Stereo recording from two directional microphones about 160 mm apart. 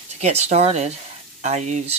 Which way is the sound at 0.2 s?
45° right (ahead or behind).